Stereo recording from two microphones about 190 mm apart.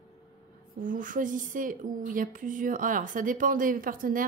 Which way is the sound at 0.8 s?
45° right (ahead or behind).